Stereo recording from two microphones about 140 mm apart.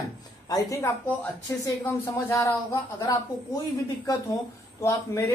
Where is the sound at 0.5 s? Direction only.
25° left (ahead or behind).